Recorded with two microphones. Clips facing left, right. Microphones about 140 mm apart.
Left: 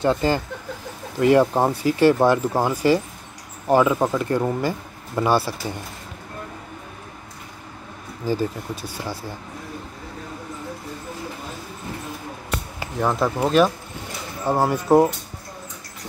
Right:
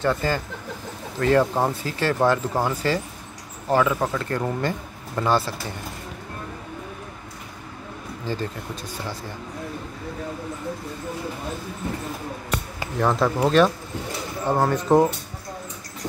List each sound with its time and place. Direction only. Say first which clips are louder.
0.0 s speech: left 3 dB; 20° left (ahead or behind)
8.3 s speech: left 5 dB; 10° left (ahead or behind)
13.0 s speech: right 1 dB; centre (ahead or behind)